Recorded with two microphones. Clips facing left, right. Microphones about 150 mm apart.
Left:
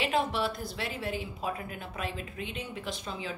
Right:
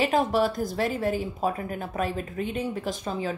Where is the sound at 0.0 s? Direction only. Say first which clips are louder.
Right 6 dB; 45° right (ahead or behind).